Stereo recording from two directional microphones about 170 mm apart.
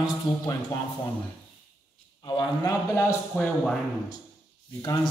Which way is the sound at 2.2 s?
25° left (ahead or behind).